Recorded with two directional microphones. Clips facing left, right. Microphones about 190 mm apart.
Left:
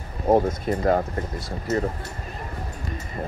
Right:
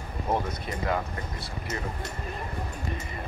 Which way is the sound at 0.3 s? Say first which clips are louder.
Left 10 dB; 45° left (ahead or behind).